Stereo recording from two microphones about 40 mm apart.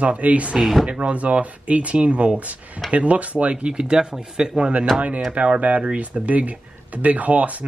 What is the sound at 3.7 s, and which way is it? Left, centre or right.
Speech, centre.